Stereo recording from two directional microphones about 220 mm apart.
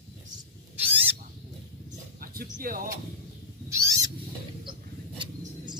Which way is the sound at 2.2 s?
40° right (ahead or behind).